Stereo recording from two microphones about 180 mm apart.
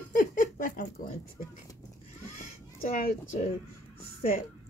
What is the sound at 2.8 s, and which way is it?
Speech, 50° left (ahead or behind).